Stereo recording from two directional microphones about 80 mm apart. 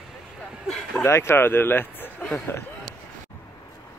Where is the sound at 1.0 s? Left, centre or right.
Left.